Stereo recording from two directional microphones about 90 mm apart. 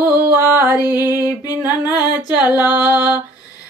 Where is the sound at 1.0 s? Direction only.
40° left (ahead or behind).